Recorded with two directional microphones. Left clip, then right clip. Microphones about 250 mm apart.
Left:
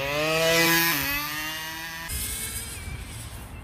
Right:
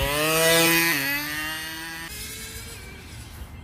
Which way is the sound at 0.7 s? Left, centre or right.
Centre.